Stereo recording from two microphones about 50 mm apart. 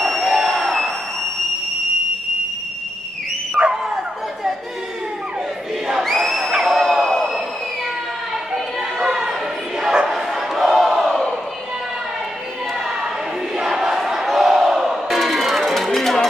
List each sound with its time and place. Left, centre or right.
0.0 s a sound: centre
3.6 s dog: centre
6.0 s crowd: centre
9.0 s a sound: centre
9.8 s bow-wow: centre
10.5 s battle cry: centre
13.6 s battle cry: centre